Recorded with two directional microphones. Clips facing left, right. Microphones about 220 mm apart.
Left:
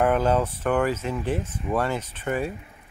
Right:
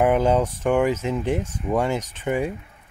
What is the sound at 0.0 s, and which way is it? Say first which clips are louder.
Speech: right 3 dB; 15° right (ahead or behind).